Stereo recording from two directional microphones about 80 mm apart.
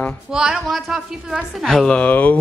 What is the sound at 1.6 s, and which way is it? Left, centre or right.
Speech, centre.